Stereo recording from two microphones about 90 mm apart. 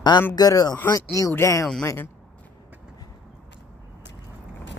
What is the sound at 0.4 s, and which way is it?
Speech, 45° left (ahead or behind).